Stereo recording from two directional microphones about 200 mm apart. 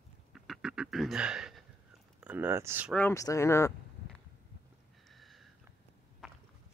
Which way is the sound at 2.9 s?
10° left (ahead or behind).